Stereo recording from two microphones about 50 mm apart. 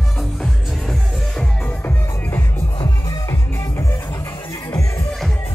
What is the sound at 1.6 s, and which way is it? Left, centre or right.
Music, left.